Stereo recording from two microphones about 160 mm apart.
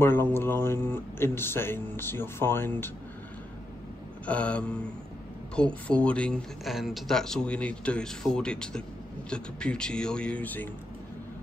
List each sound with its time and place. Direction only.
0.0 s speech: 15° left (ahead or behind)
4.3 s speech: 10° left (ahead or behind)